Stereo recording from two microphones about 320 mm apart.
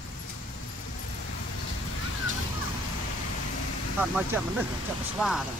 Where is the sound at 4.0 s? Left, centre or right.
Centre.